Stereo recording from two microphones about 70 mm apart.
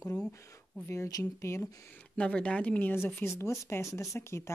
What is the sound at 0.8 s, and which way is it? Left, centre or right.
Speech, left.